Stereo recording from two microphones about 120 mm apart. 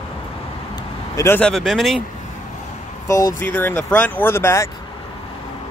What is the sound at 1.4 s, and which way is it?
Speech, centre (ahead or behind).